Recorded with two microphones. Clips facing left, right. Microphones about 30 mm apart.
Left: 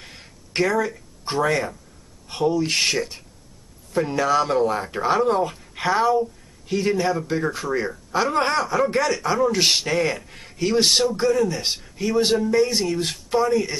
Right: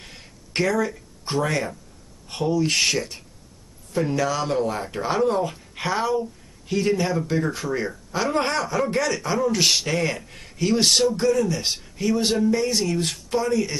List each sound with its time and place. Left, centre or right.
0.0 s a sound: centre
2.2 s speech: centre
4.1 s speech: left
4.5 s speech: centre